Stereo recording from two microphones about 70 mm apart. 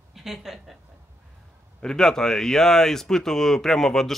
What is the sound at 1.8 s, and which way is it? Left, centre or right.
Speech, centre.